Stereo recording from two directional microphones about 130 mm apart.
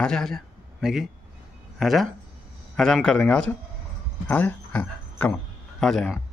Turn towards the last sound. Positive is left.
turn(degrees=5)  # may be behind; listen again after turning